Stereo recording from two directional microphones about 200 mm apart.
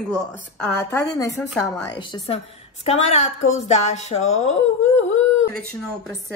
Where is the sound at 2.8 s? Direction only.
30° left (ahead or behind).